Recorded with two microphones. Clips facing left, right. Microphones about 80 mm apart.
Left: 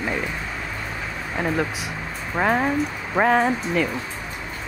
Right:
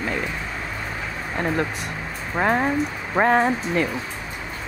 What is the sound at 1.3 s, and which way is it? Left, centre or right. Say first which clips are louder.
Speech: even; centre.